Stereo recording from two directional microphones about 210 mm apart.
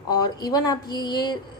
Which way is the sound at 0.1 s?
20° left (ahead or behind).